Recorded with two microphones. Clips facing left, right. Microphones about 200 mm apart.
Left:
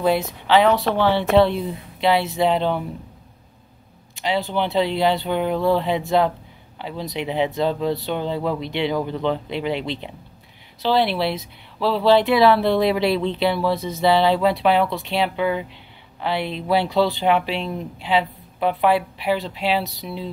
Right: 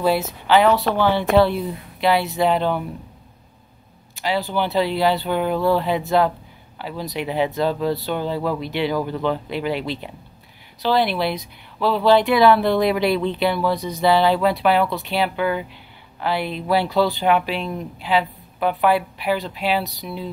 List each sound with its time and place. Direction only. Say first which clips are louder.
0.5 s speech: even; 25° left (ahead or behind)
4.2 s speech: even; 25° left (ahead or behind)
19.8 s speech: even; centre (ahead or behind)